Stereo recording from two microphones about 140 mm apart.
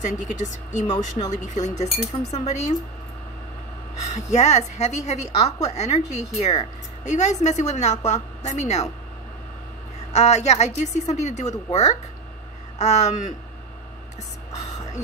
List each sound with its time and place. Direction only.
0.0 s a woman's voice: 60° left (ahead or behind)
3.9 s a woman's voice: 55° left (ahead or behind)
10.1 s a woman's voice: 50° left (ahead or behind)